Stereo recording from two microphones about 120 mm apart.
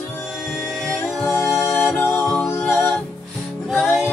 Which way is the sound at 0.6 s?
5° left (ahead or behind).